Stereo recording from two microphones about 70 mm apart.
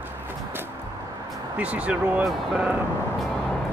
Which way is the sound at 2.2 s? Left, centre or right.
Centre.